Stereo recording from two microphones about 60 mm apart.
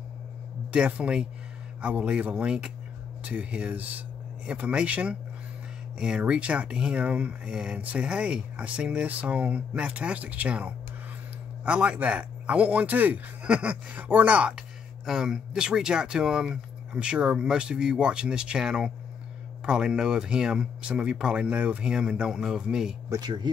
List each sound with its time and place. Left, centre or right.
0.7 s speech: centre
7.5 s speech: centre
7.8 s speech: right